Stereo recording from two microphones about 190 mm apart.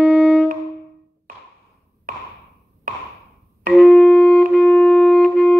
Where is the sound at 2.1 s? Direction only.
45° right (ahead or behind).